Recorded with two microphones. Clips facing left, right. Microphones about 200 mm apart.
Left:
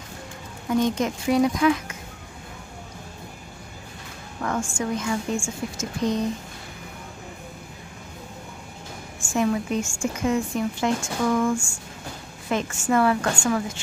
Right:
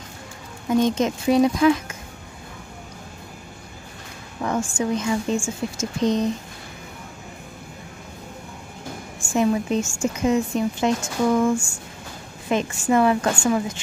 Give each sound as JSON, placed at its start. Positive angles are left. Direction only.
{"t": 0.8, "sound": "a woman's voice", "side_deg": -20}
{"t": 4.4, "sound": "a woman's voice", "side_deg": -20}
{"t": 9.3, "sound": "a woman's voice", "side_deg": -20}